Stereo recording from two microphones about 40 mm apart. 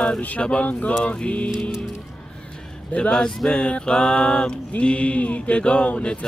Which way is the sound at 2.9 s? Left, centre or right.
Left.